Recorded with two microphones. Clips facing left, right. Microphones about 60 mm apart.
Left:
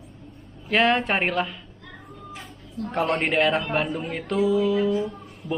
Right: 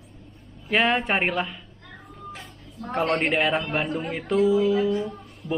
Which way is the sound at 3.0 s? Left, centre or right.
Centre.